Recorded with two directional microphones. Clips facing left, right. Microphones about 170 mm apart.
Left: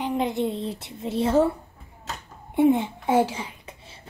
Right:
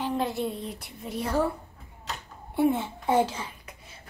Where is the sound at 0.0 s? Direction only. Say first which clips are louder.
Left 3 dB; 15° left (ahead or behind).